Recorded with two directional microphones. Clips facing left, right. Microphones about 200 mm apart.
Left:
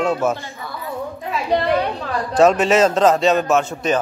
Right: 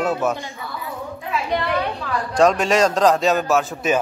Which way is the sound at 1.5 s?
35° left (ahead or behind).